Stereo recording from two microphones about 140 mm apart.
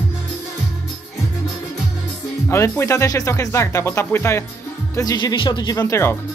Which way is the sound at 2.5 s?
20° left (ahead or behind).